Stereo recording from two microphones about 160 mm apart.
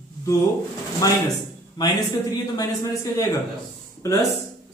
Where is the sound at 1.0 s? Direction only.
20° left (ahead or behind).